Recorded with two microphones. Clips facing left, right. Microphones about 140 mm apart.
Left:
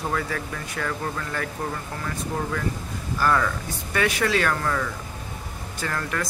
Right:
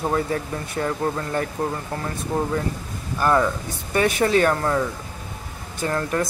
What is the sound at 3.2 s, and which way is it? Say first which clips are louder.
Speech: right 3 dB; 25° right (ahead or behind).